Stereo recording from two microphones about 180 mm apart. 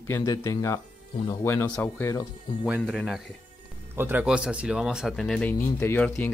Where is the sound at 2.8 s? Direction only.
Centre (ahead or behind).